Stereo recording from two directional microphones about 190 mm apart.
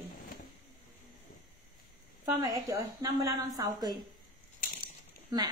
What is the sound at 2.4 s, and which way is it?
A woman's voice, 20° right (ahead or behind).